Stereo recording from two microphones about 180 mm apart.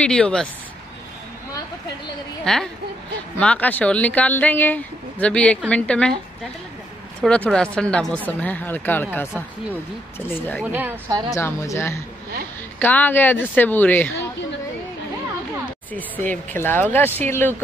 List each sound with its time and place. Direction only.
0.0 s speech: 5° left (ahead or behind)
2.4 s speech: 5° left (ahead or behind)
7.2 s speech: 5° left (ahead or behind)
10.6 s a woman's voice: 10° right (ahead or behind)
11.3 s speech: 15° left (ahead or behind)
15.9 s speech: 10° left (ahead or behind)